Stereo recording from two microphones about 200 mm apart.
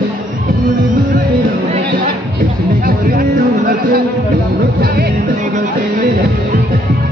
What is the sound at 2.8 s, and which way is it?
Music, 45° right (ahead or behind).